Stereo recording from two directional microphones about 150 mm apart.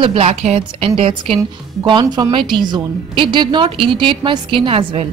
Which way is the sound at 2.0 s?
25° right (ahead or behind).